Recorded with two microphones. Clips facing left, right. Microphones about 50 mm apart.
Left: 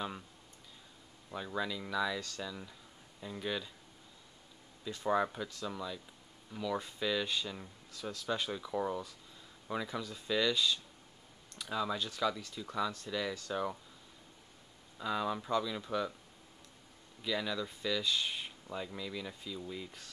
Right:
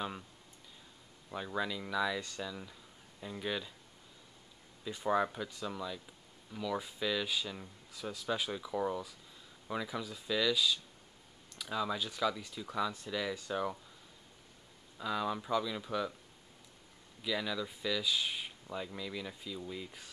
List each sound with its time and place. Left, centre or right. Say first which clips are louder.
1.3 s speech: right 1 dB; centre
2.1 s speech: right 1 dB; centre
2.4 s speech: right 1 dB; centre
4.8 s speech: even; centre
7.9 s speech: even; centre
15.0 s speech: even; centre
17.2 s speech: even; centre